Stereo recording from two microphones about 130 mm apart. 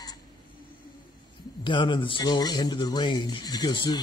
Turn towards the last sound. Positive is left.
turn(degrees=35)  # may be behind; listen again after turning